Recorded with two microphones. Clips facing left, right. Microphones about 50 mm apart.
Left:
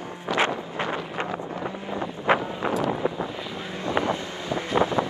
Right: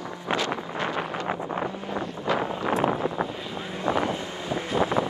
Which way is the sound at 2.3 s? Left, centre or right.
Left.